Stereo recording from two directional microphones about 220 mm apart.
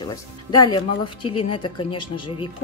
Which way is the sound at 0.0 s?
20° left (ahead or behind).